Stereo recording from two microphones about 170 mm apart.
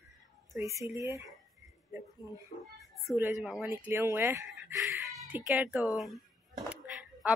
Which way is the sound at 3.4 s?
5° right (ahead or behind).